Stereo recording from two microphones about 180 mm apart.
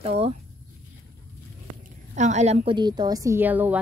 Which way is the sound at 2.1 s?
40° right (ahead or behind).